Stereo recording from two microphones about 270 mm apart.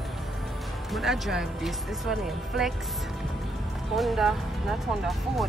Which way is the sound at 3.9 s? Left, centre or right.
Centre.